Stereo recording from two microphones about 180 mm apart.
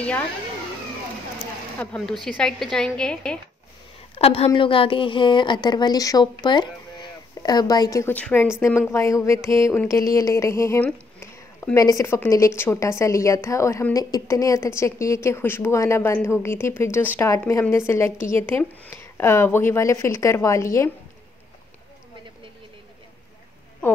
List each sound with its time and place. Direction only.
1.8 s a woman's voice: 5° left (ahead or behind)
4.1 s a woman's voice: 35° left (ahead or behind); by 10.9 s 15° left (ahead or behind)
10.9 s a sound: 5° left (ahead or behind)
11.7 s a woman's voice: 20° left (ahead or behind)